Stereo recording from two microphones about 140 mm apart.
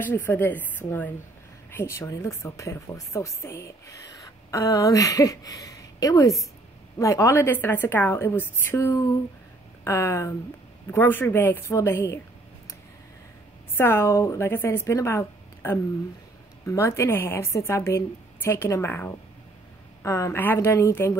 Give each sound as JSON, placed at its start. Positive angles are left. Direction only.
{"t": 0.0, "sound": "a woman's voice", "side_deg": 15}
{"t": 13.7, "sound": "a woman's voice", "side_deg": 15}